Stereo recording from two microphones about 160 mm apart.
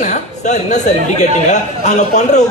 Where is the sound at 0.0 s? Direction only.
50° left (ahead or behind).